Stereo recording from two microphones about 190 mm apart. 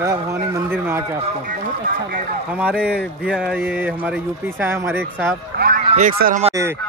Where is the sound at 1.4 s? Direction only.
45° right (ahead or behind).